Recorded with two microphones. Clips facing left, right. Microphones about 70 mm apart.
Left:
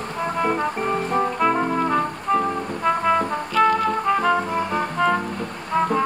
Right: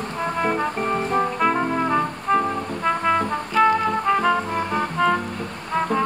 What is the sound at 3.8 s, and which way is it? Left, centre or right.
Music, centre.